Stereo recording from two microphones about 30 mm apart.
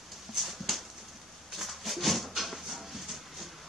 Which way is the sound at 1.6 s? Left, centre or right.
Centre.